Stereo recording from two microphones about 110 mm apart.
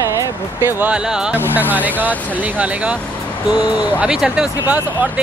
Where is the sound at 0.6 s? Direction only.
15° right (ahead or behind).